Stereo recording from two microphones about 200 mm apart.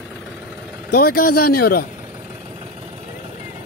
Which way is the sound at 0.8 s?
50° left (ahead or behind).